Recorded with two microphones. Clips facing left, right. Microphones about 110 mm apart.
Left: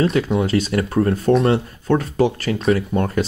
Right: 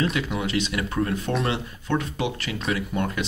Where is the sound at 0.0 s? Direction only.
35° left (ahead or behind).